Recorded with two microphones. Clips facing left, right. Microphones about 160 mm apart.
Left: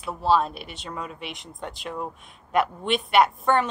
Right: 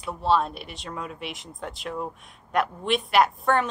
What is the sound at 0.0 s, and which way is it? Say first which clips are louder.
Speech: left 1 dB; centre (ahead or behind).